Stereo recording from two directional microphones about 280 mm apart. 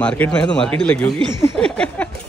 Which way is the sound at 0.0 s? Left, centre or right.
Centre.